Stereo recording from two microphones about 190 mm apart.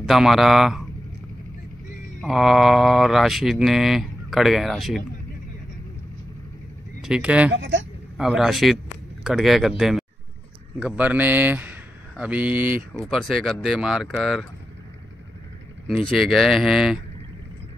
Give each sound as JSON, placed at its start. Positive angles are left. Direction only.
{"t": 0.0, "sound": "speech", "side_deg": 0}
{"t": 2.2, "sound": "speech", "side_deg": 0}
{"t": 7.0, "sound": "speech", "side_deg": -5}
{"t": 7.5, "sound": "speech", "side_deg": -75}
{"t": 8.2, "sound": "speech", "side_deg": 0}
{"t": 13.2, "sound": "speech", "side_deg": 0}
{"t": 16.1, "sound": "speech", "side_deg": 0}